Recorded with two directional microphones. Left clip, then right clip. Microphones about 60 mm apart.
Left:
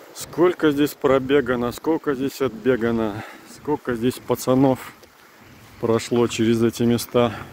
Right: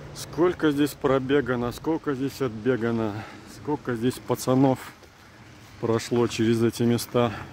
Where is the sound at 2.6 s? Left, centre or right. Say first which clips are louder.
Left 4 dB; left.